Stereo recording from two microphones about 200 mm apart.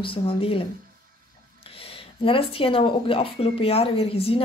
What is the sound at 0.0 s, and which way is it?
Speech, 25° left (ahead or behind).